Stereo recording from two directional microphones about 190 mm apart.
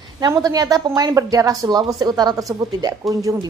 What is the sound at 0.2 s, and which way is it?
Speech, 20° right (ahead or behind).